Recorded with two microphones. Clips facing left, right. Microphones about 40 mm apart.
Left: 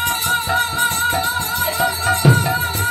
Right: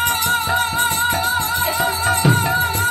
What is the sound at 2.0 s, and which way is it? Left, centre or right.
Music, right.